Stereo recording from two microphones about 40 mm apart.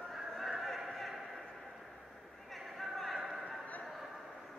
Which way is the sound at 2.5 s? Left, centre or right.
Centre.